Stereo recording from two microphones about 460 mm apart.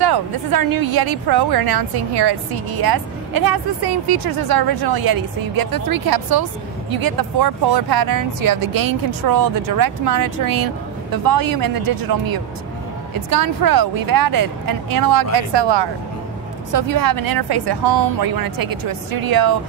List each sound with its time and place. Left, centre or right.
0.0 s a woman's voice: right
16.7 s a woman's voice: right